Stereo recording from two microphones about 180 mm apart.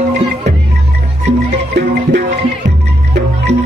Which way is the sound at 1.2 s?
70° right (ahead or behind).